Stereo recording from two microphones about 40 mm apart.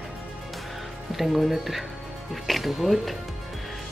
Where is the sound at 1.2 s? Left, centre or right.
Centre.